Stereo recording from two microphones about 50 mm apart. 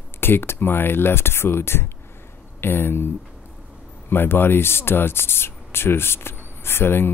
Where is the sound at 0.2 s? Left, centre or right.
Left.